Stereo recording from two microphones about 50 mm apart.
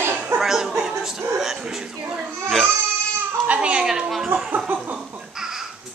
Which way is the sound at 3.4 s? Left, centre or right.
Right.